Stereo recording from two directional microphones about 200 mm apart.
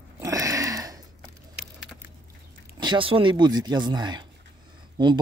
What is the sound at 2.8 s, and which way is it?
Speech, 25° right (ahead or behind).